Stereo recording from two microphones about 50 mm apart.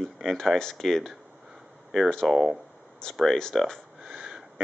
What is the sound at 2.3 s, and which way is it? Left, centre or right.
Speech, centre.